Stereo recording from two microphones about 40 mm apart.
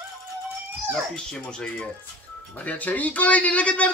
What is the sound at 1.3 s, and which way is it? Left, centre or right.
Speech, centre.